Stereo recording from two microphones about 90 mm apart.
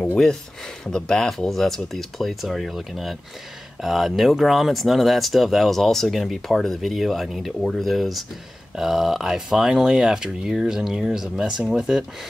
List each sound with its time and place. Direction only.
0.8 s speech: 5° left (ahead or behind)